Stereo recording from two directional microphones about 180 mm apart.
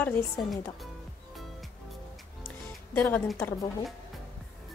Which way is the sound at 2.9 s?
10° left (ahead or behind).